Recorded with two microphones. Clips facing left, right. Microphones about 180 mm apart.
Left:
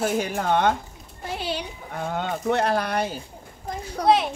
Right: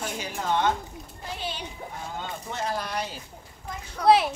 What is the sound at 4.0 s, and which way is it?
Speech, 35° left (ahead or behind).